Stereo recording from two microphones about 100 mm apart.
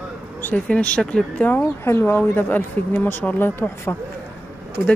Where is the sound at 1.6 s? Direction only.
25° left (ahead or behind).